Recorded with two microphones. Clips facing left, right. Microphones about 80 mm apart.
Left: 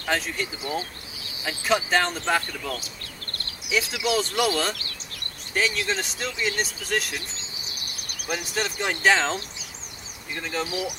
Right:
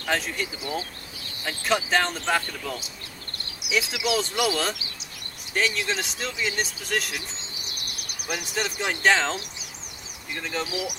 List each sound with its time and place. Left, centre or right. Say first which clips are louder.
0.1 s speech: even; centre
3.6 s a sound: left 1 dB; centre
4.0 s speech: left 2 dB; centre
8.3 s speech: left 1 dB; centre